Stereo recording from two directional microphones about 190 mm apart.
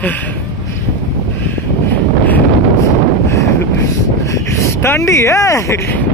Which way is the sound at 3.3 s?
15° left (ahead or behind).